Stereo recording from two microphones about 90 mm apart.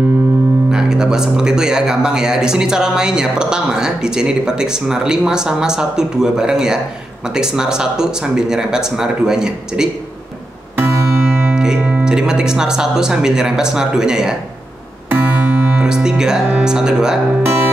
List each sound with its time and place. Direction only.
0.7 s speech: 5° right (ahead or behind)
10.8 s music: 30° right (ahead or behind)
11.5 s speech: 5° right (ahead or behind)
15.0 s music: 20° right (ahead or behind)